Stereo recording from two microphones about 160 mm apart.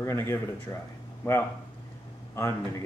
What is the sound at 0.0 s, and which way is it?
Speech, 15° left (ahead or behind).